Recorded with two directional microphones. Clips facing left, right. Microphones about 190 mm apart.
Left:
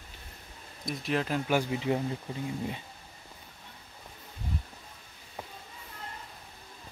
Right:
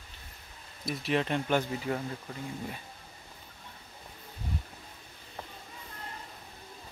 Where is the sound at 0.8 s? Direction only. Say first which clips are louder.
Right 1 dB; centre (ahead or behind); by 2.0 s 20° left (ahead or behind).